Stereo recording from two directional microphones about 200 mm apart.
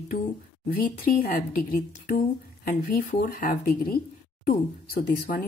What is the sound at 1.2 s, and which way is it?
Speech, 45° left (ahead or behind).